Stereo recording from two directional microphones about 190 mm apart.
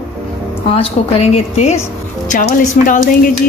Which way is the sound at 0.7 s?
30° left (ahead or behind).